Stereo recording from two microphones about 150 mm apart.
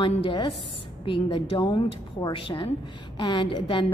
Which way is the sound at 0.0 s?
35° left (ahead or behind).